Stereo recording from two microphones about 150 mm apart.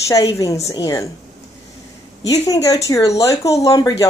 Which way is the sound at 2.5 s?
20° left (ahead or behind).